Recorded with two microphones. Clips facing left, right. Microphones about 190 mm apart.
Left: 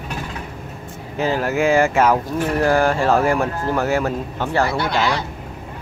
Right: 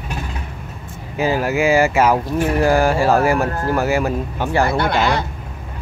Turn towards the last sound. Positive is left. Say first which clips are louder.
# right 2 dB
turn(degrees=-55)  # may be behind; listen again after turning